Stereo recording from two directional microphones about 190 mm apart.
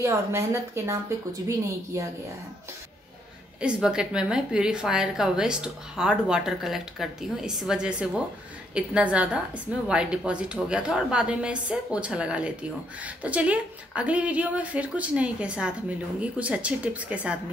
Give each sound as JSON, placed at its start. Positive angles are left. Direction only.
{"t": 0.0, "sound": "a woman's voice", "side_deg": -15}
{"t": 3.6, "sound": "a woman's voice", "side_deg": -5}